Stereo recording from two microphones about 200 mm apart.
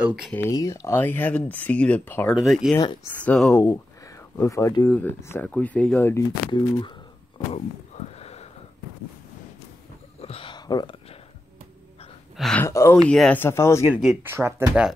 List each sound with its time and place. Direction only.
0.0 s speech: 5° right (ahead or behind)
0.3 s speech: 15° left (ahead or behind)
2.7 s speech: 15° left (ahead or behind)
6.5 s speech: 25° left (ahead or behind)
7.9 s sniff: 30° left (ahead or behind)
10.2 s a sound: 25° left (ahead or behind)
12.4 s speech: 5° left (ahead or behind)
12.6 s speech: 15° left (ahead or behind)
14.0 s speech: 10° right (ahead or behind)